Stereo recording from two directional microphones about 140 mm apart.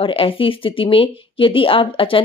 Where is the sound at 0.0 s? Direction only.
40° left (ahead or behind).